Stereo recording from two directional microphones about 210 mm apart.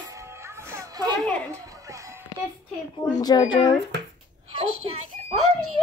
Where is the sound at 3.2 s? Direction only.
20° left (ahead or behind).